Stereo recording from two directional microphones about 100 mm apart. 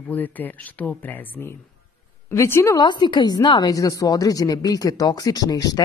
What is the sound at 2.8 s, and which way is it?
Speech, 50° left (ahead or behind).